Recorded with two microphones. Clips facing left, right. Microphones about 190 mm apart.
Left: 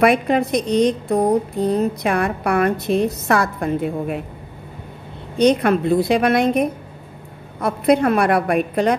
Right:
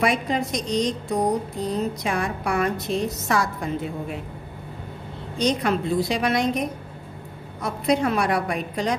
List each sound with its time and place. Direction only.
0.0 s speech: 60° left (ahead or behind)
5.4 s speech: 60° left (ahead or behind)